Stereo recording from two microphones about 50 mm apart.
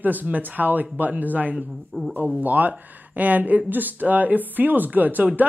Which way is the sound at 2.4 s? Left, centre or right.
Right.